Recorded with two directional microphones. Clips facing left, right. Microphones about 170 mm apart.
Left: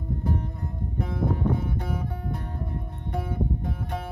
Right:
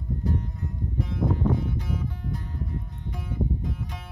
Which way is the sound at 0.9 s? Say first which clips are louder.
Even; 55° left (ahead or behind).